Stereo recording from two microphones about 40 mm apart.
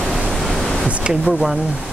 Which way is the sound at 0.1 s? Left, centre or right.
Centre.